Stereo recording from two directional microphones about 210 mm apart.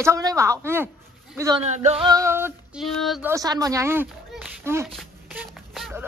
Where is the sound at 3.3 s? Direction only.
15° right (ahead or behind).